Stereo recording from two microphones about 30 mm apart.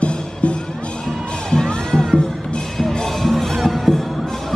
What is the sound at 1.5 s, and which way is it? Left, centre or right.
Music, centre.